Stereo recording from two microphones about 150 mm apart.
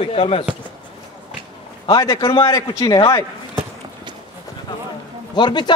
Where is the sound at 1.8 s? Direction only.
25° left (ahead or behind).